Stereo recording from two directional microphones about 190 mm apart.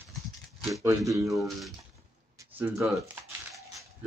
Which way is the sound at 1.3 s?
Centre (ahead or behind).